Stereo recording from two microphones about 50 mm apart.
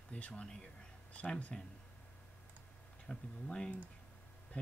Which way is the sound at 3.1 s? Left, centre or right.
Centre.